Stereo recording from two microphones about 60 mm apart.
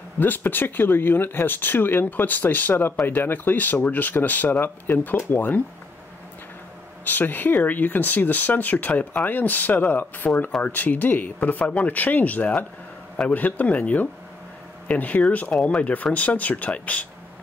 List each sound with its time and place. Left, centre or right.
0.2 s speech: left
7.1 s speech: left